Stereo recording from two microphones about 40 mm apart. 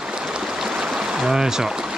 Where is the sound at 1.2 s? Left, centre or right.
Centre.